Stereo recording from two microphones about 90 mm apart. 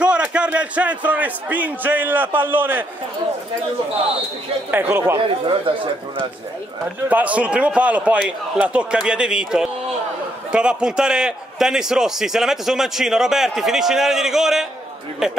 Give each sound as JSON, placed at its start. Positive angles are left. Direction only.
{"t": 0.0, "sound": "a man's voice", "side_deg": -10}
{"t": 4.6, "sound": "speech", "side_deg": -25}
{"t": 5.4, "sound": "speech", "side_deg": -70}
{"t": 7.1, "sound": "a man's voice", "side_deg": -15}